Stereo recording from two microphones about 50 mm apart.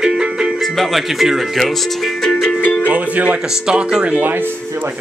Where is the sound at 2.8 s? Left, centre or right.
Right.